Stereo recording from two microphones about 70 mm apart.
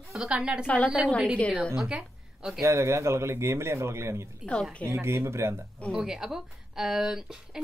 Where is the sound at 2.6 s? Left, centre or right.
Right.